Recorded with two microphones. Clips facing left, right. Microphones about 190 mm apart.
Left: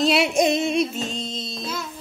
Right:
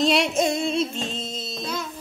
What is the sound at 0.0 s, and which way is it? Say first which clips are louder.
Music: left 1 dB; 5° left (ahead or behind).